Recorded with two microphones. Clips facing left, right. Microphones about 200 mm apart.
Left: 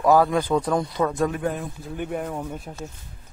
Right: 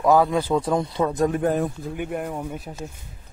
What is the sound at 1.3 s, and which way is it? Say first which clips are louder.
Speech: right 5 dB; 45° right (ahead or behind).